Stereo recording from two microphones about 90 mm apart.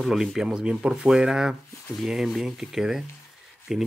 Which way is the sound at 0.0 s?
Centre (ahead or behind).